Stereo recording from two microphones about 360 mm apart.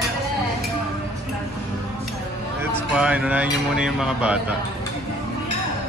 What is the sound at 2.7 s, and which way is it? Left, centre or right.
Speech, centre.